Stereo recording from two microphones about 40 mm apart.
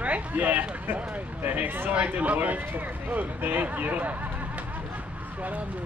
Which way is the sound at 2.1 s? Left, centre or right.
Right.